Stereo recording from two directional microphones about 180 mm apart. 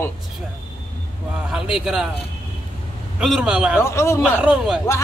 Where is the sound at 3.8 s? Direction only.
15° left (ahead or behind).